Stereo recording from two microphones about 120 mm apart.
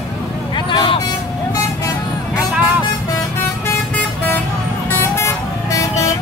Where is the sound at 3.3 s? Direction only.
20° left (ahead or behind).